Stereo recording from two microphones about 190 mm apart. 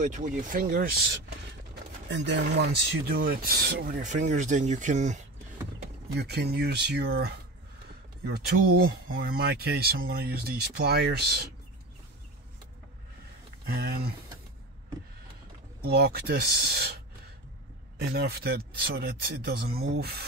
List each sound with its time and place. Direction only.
0.0 s speech: 40° right (ahead or behind)
2.0 s speech: 70° right (ahead or behind); by 5.2 s 40° right (ahead or behind)
6.1 s speech: 60° right (ahead or behind)
15.8 s speech: 55° right (ahead or behind)